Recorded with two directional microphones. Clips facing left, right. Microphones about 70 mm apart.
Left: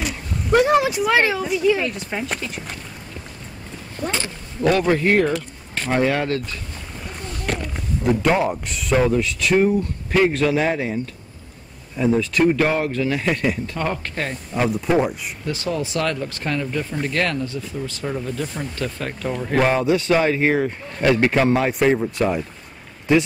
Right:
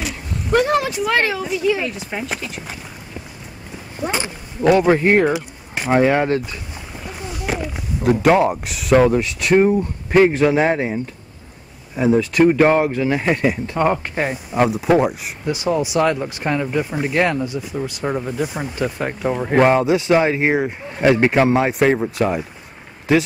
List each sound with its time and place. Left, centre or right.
0.0 s speech: centre
3.9 s speech: centre
7.0 s a sound: centre
9.6 s speech: right
12.2 s speech: centre
12.4 s speech: right
13.7 s speech: centre
15.4 s speech: centre